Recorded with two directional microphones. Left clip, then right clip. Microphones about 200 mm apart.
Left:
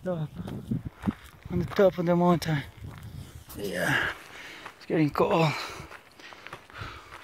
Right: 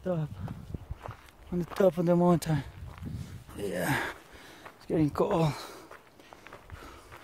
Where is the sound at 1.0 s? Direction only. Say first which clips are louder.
Left 10 dB; 50° left (ahead or behind).